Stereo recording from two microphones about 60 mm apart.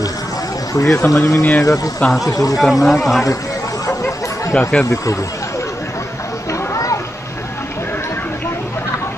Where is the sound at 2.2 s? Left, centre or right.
Left.